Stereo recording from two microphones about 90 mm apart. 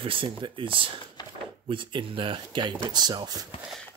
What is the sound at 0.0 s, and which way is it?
Speech, 70° right (ahead or behind).